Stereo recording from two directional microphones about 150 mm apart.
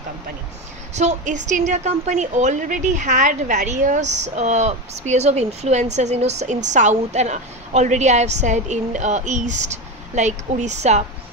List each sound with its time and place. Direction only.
0.9 s a woman's voice: 50° right (ahead or behind)